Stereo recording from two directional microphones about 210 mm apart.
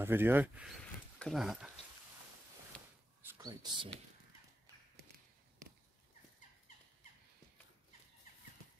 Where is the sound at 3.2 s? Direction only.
15° right (ahead or behind).